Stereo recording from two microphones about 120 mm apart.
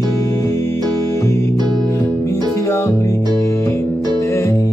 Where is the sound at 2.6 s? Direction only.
25° left (ahead or behind).